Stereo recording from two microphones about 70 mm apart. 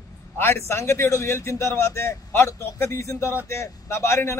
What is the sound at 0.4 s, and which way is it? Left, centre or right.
Speech, left.